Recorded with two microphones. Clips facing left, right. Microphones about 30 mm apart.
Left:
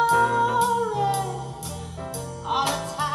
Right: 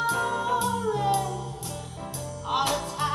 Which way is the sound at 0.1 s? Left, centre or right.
Left.